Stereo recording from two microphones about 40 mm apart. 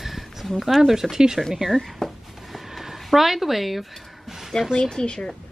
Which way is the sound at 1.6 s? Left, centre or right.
Centre.